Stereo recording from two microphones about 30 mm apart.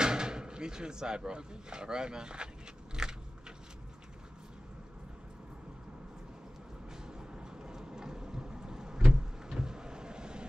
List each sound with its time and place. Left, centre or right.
0.0 s speech: right
3.0 s biting: right
7.1 s a sound: right